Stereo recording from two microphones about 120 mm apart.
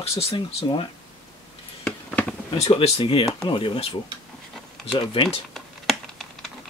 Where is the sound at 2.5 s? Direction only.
60° left (ahead or behind); by 3.8 s 45° left (ahead or behind).